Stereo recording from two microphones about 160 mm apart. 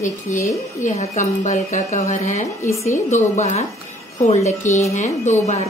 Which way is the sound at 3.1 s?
50° left (ahead or behind).